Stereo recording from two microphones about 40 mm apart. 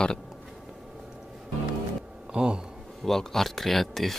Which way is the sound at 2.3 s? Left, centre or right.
Right.